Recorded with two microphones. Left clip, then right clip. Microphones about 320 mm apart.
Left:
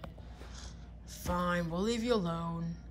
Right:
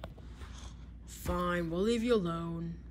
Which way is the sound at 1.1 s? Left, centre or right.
Centre.